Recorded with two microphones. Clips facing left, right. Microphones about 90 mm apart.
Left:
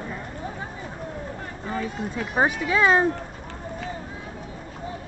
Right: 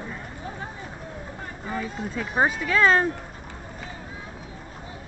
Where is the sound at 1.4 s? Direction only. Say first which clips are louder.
Even; 5° right (ahead or behind).